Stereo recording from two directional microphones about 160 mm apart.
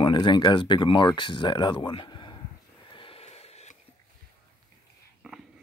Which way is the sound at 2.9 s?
35° left (ahead or behind).